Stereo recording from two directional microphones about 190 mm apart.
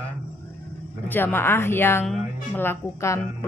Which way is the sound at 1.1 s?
10° left (ahead or behind).